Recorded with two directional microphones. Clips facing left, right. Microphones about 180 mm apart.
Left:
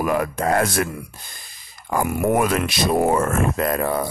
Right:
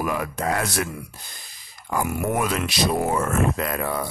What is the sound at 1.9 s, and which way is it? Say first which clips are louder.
Speech: left 5 dB; 50° left (ahead or behind).